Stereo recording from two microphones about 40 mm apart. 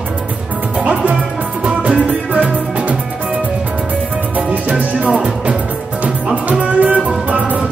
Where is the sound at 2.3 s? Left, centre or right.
Right.